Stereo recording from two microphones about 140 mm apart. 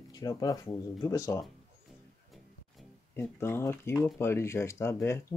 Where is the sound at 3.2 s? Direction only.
20° left (ahead or behind).